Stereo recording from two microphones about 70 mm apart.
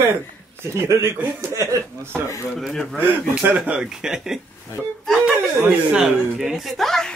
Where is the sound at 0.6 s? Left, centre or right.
Right.